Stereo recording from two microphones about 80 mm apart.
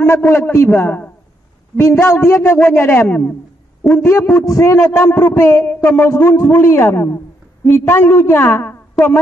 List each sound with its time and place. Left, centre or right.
0.0 s a man's voice: left
9.0 s a woman's voice: centre